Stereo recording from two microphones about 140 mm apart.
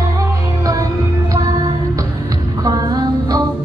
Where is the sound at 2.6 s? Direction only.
25° right (ahead or behind).